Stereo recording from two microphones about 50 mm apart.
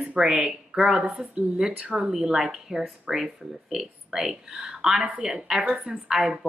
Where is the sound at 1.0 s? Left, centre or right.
Right.